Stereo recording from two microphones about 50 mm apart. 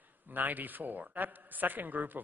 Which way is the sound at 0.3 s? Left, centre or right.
Right.